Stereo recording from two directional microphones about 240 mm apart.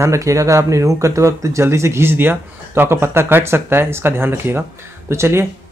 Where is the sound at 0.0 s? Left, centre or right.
Centre.